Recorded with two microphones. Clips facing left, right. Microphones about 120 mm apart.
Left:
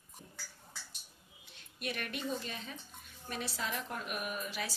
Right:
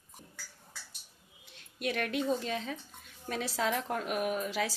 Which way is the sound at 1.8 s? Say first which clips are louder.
Right 7 dB; 90° right.